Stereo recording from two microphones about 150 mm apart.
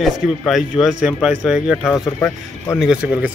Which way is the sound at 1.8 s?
15° left (ahead or behind).